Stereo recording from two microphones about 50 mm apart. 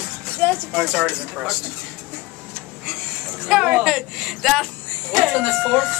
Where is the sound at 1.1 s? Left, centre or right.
Centre.